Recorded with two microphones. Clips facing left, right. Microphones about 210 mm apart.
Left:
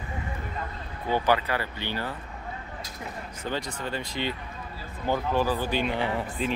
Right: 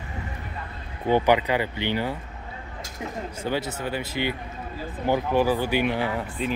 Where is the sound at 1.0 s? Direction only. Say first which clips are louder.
Right 5 dB; 15° right (ahead or behind).